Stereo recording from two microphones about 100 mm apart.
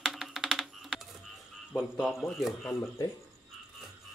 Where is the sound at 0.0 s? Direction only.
Centre (ahead or behind).